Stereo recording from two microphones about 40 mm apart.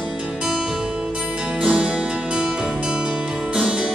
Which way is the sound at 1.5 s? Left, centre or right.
Right.